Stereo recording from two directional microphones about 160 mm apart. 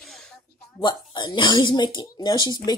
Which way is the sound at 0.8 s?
25° left (ahead or behind).